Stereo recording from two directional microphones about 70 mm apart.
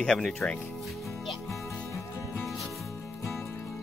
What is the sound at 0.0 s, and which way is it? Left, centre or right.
Speech, centre.